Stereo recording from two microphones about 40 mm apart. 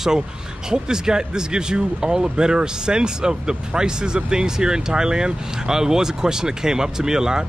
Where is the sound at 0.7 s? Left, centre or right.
Centre.